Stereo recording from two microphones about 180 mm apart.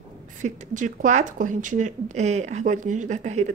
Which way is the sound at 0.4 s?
45° right (ahead or behind).